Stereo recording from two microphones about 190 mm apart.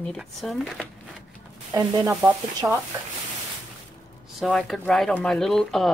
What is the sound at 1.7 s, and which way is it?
Speech, 20° right (ahead or behind).